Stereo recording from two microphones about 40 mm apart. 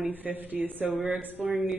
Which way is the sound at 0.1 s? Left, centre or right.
Right.